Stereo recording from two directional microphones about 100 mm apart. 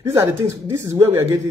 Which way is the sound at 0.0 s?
30° right (ahead or behind).